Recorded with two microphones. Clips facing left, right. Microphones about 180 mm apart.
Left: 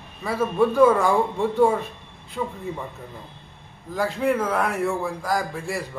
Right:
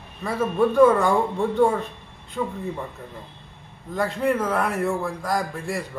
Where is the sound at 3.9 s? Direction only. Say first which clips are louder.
Even; centre (ahead or behind).